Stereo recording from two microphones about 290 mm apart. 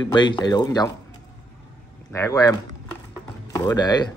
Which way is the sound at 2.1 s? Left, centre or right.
Centre.